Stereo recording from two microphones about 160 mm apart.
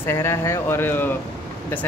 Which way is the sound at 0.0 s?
15° left (ahead or behind).